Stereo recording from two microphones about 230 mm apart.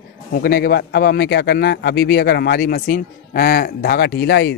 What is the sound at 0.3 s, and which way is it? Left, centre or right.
Speech, left.